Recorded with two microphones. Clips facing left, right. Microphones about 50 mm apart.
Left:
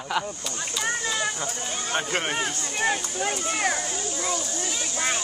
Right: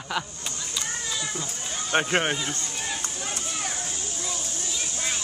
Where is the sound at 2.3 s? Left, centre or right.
Left.